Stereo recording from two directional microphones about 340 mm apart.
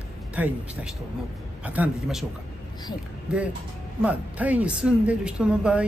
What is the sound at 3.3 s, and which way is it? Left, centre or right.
Speech, centre.